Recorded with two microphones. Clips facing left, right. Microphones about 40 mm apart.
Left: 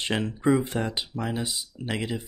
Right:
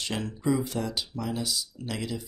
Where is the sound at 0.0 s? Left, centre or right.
Left.